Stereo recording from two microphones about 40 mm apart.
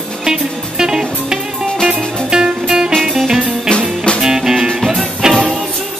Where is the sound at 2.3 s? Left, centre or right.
Centre.